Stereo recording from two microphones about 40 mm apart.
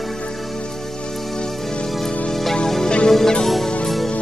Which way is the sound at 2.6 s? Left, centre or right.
Centre.